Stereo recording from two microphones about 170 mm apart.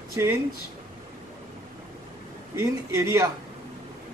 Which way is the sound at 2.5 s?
15° right (ahead or behind).